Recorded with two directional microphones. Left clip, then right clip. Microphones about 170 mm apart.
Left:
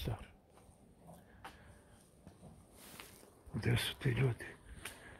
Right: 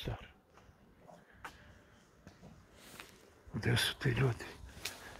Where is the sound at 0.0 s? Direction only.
15° left (ahead or behind).